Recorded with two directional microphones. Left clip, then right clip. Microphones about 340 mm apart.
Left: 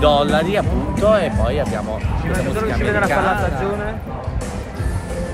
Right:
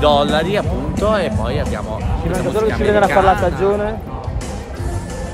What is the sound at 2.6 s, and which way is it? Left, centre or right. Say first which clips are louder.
Speech: right 6 dB; right.